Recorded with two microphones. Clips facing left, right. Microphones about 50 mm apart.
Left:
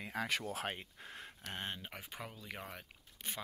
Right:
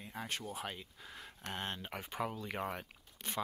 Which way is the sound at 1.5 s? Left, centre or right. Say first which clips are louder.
Right 2 dB; centre.